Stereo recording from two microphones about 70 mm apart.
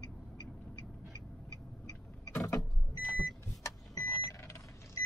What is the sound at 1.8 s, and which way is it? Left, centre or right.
Vehicle, left.